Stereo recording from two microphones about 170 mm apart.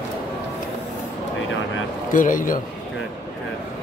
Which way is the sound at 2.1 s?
50° left (ahead or behind).